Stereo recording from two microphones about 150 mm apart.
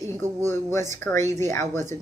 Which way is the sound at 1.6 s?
55° right (ahead or behind).